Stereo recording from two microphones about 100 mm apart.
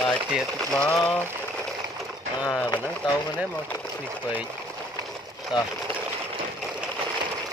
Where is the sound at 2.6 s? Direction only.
35° left (ahead or behind).